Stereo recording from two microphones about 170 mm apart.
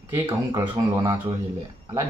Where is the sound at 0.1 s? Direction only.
30° right (ahead or behind).